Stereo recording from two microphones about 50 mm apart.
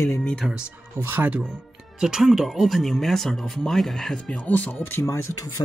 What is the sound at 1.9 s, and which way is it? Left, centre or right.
Speech, centre.